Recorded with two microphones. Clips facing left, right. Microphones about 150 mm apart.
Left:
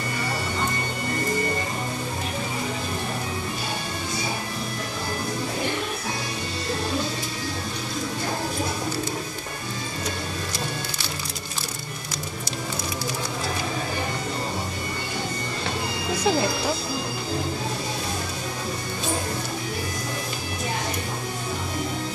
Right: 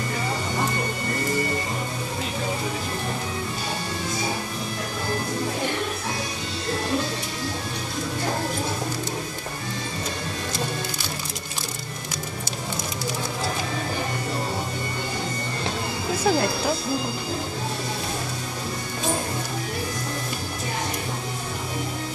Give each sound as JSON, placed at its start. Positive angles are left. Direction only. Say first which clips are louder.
{"t": 16.3, "sound": "music", "louder": "right 1 dB", "side_deg": -5}